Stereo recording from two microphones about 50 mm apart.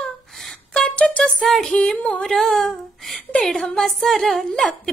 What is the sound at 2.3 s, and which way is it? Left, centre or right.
Speech, centre.